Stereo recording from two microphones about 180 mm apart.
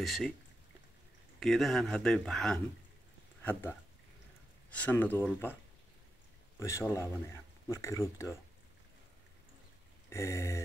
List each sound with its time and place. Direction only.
0.0 s speech: centre (ahead or behind)
1.4 s speech: centre (ahead or behind)
4.6 s speech: 10° left (ahead or behind)
6.6 s speech: 15° left (ahead or behind)
10.0 s a sound: 15° left (ahead or behind)